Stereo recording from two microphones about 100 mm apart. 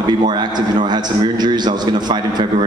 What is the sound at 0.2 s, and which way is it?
A man's voice, 45° right (ahead or behind).